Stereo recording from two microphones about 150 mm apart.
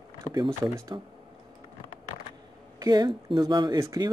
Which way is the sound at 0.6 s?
20° right (ahead or behind).